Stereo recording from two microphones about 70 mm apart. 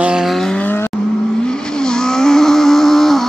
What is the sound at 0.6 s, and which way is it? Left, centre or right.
Vehicle, left.